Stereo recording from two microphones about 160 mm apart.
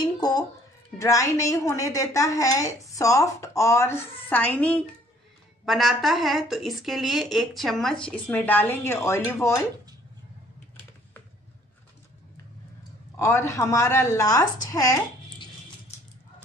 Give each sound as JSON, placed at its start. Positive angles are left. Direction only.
{"t": 0.0, "sound": "a child's voice", "side_deg": 25}
{"t": 13.2, "sound": "a woman's voice", "side_deg": 15}